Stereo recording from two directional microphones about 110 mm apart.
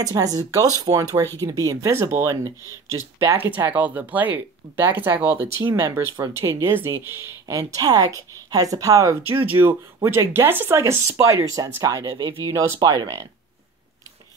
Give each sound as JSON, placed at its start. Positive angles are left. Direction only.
{"t": 0.0, "sound": "speech", "side_deg": -35}
{"t": 9.3, "sound": "speech", "side_deg": -20}
{"t": 12.2, "sound": "speech", "side_deg": -45}
{"t": 12.5, "sound": "speech", "side_deg": -35}